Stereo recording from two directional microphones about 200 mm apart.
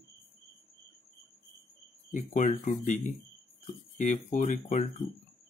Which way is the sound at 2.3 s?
40° left (ahead or behind).